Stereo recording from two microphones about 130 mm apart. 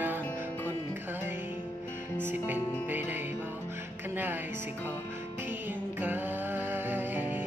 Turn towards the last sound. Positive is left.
turn(degrees=-15)  # may be behind; listen again after turning